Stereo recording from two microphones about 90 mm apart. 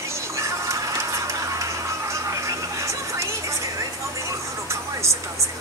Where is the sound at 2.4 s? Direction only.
35° right (ahead or behind).